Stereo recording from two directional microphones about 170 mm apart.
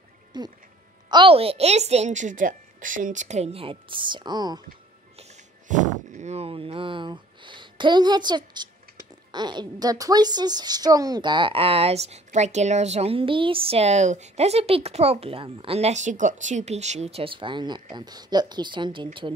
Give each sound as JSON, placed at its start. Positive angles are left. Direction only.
{"t": 0.3, "sound": "a woman's voice", "side_deg": -25}
{"t": 5.7, "sound": "a woman's voice", "side_deg": -45}